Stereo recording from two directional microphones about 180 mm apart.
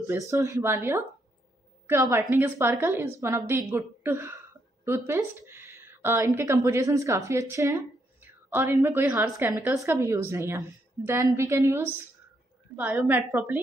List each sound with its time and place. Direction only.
0.0 s a woman's voice: 15° right (ahead or behind)